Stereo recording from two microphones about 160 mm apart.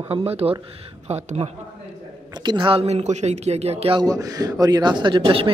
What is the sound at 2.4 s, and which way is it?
Speech, 30° right (ahead or behind).